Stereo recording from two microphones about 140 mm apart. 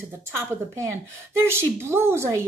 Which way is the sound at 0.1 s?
15° right (ahead or behind).